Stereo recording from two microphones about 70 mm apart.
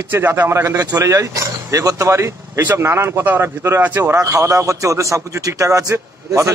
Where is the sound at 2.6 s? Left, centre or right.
Right.